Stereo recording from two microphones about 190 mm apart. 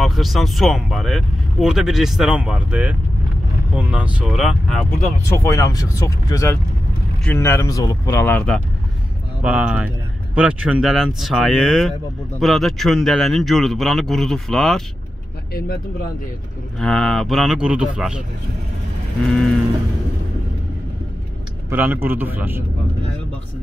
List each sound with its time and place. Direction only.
0.0 s speech: centre (ahead or behind)
4.9 s speech: 15° left (ahead or behind)
9.4 s a man's voice: 5° right (ahead or behind)
16.8 s speech: 5° left (ahead or behind)
19.2 s speech: centre (ahead or behind)
21.6 s a man's voice: 10° right (ahead or behind)